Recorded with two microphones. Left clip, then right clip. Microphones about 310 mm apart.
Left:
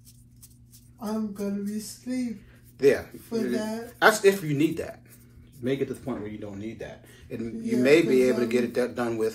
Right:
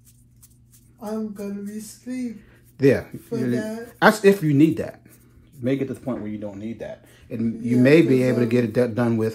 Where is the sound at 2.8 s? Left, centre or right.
Right.